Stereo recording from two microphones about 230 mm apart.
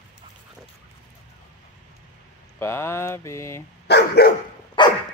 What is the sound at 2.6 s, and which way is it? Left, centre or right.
Mantra, centre.